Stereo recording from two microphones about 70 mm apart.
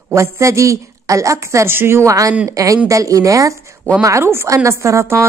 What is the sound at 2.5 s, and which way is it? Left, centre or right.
Speech, right.